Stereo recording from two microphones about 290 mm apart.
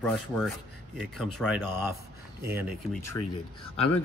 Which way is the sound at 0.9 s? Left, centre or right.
Centre.